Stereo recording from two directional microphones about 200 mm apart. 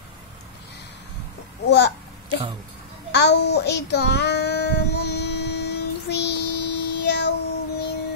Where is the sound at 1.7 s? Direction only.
60° left (ahead or behind).